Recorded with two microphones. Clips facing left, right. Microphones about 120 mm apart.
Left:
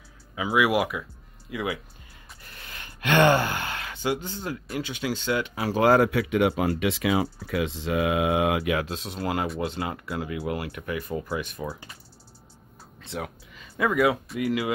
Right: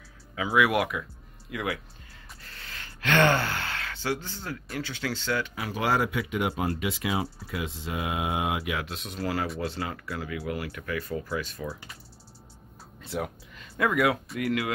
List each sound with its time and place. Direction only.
0.4 s speech: 5° left (ahead or behind)
2.4 s gasp: 15° left (ahead or behind)
4.7 s speech: 15° left (ahead or behind)
5.6 s speech: 35° left (ahead or behind)
5.9 s speech: 60° left (ahead or behind)
8.8 s speech: 30° left (ahead or behind)
13.0 s speech: centre (ahead or behind)